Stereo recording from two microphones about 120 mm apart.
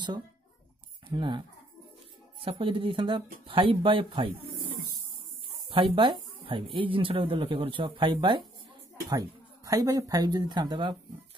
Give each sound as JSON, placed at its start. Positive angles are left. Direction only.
{"t": 1.0, "sound": "speech", "side_deg": -40}
{"t": 2.4, "sound": "speech", "side_deg": -45}
{"t": 5.7, "sound": "speech", "side_deg": -45}
{"t": 9.7, "sound": "speech", "side_deg": -30}